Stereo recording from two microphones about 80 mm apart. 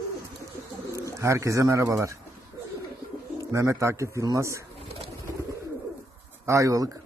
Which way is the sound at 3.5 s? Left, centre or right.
Right.